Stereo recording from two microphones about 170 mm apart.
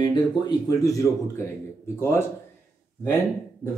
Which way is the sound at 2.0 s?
15° left (ahead or behind).